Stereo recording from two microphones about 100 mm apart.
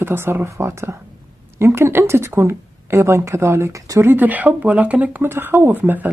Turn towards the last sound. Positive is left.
turn(degrees=-20)  # may be behind; listen again after turning